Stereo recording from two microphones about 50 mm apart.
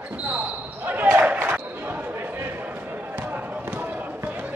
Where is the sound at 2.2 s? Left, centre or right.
Right.